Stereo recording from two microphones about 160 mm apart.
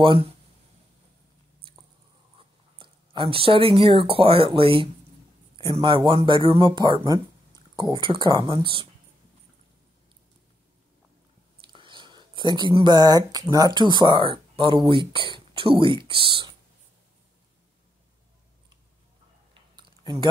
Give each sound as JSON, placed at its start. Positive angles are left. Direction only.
{"t": 0.0, "sound": "speech", "side_deg": -35}
{"t": 2.3, "sound": "speech", "side_deg": -35}
{"t": 11.6, "sound": "speech", "side_deg": -30}